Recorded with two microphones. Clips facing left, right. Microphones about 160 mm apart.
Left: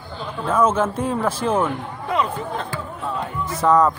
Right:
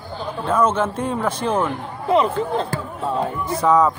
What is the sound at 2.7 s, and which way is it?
Basketball bounce, 40° right (ahead or behind).